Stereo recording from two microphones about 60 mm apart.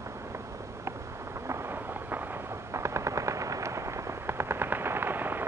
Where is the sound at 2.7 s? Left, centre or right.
Right.